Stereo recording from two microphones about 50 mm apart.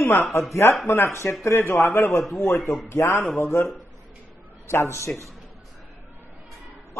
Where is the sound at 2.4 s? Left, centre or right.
Left.